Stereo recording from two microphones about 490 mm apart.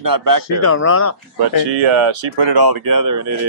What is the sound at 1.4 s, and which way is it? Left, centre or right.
Speech, right.